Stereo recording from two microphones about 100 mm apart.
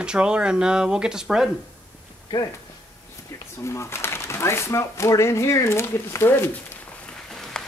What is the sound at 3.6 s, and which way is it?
Speech, 25° left (ahead or behind).